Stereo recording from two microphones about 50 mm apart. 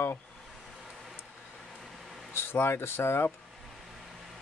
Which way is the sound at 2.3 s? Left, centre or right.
Left.